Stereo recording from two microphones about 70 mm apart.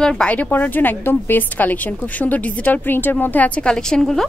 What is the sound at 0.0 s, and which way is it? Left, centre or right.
A woman's voice, centre.